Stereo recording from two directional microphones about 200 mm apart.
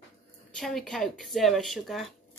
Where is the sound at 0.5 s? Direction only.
Centre (ahead or behind).